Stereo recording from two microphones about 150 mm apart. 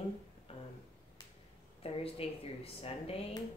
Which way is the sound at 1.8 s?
40° left (ahead or behind).